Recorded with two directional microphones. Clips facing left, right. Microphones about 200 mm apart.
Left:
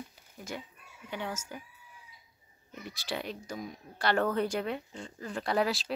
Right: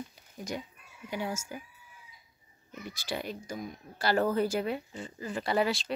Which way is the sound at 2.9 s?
Centre (ahead or behind).